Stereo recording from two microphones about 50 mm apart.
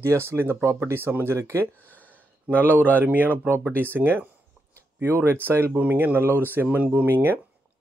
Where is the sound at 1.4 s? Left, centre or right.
Right.